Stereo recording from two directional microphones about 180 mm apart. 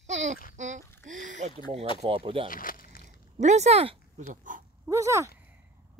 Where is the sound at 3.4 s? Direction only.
40° right (ahead or behind).